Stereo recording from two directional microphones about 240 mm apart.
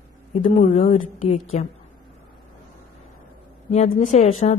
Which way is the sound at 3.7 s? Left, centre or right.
Left.